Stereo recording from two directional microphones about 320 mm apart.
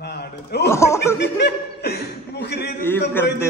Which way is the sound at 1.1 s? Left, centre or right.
Left.